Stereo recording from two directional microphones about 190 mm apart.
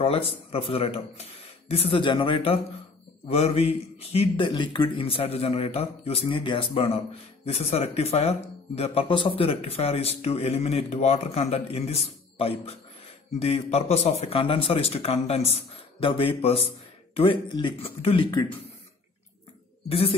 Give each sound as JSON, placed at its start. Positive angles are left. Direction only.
{"t": 0.0, "sound": "speech", "side_deg": 30}
{"t": 19.9, "sound": "speech", "side_deg": 30}